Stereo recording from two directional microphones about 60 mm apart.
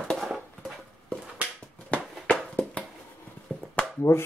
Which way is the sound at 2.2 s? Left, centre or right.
Centre.